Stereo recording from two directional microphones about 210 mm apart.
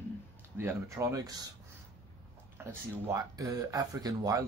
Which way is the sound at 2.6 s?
10° right (ahead or behind).